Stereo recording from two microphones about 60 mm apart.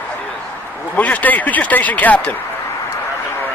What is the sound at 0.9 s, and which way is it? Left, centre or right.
Speech, left.